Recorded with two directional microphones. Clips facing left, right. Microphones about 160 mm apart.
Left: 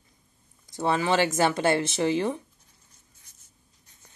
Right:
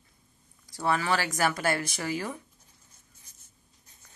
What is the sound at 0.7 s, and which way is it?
Speech, 20° left (ahead or behind).